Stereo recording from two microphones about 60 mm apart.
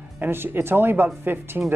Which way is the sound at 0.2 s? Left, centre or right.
Right.